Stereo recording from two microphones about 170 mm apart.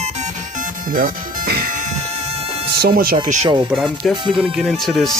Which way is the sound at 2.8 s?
60° right (ahead or behind).